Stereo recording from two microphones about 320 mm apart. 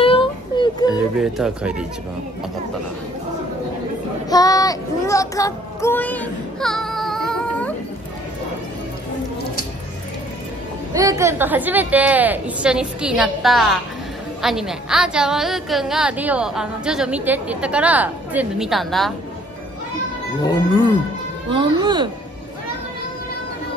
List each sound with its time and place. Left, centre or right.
0.0 s a sound: centre
0.8 s speech: centre
4.3 s speech: centre
10.9 s a woman's voice: centre
21.5 s speech: centre